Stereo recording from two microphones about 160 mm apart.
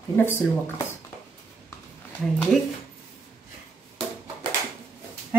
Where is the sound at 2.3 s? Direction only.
5° left (ahead or behind).